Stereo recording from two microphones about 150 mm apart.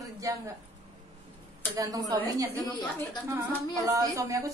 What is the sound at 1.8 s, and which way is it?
Speech, 25° right (ahead or behind).